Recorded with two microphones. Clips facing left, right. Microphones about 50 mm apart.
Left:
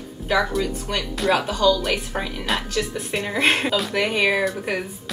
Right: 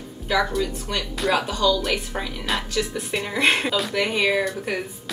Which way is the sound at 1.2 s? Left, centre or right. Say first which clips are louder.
Left 2 dB; centre.